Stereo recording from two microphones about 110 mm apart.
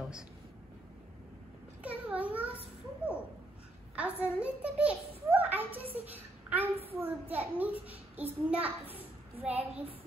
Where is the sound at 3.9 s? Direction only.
10° right (ahead or behind).